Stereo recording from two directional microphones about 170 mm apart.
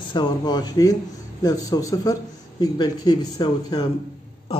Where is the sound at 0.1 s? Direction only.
25° left (ahead or behind).